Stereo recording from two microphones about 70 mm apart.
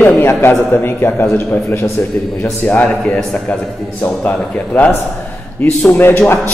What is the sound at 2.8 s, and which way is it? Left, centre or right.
A man's voice, centre.